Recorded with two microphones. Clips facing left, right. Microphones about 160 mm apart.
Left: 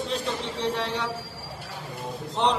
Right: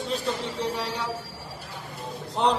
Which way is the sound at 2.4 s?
5° right (ahead or behind).